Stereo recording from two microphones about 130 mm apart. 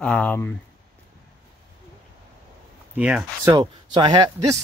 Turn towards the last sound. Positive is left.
turn(degrees=-30)  # may be behind; listen again after turning